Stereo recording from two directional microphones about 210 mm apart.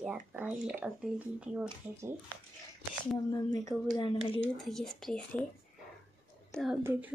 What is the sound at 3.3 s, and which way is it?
Speech, 15° left (ahead or behind).